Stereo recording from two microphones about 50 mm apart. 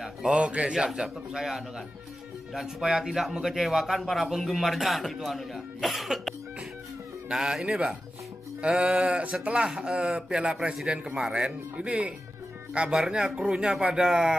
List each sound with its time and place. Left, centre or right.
0.0 s a sound: centre
0.4 s a man's voice: right; by 6.3 s centre
7.3 s speech: centre
11.7 s speech: right